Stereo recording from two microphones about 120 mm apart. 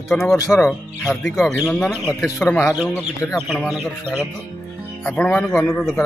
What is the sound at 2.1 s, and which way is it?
Speech, 25° left (ahead or behind).